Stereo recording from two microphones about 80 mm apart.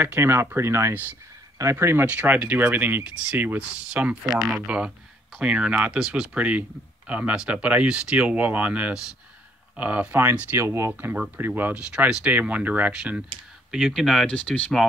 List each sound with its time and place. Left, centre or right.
0.0 s speech: right
2.0 s speech: centre
10.9 s speech: centre
13.7 s speech: centre
14.2 s speech: centre